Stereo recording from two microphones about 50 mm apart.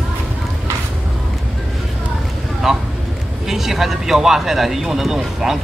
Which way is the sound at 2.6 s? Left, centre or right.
Centre.